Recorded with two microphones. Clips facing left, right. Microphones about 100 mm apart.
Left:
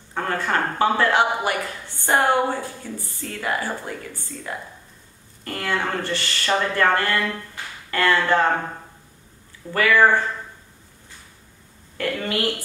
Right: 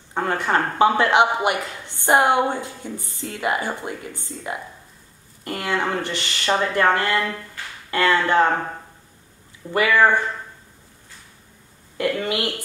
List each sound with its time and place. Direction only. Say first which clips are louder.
0.1 s speech: right 2 dB; 20° right (ahead or behind)
9.7 s speech: even; 20° right (ahead or behind)
12.0 s a woman's voice: right 2 dB; 20° right (ahead or behind)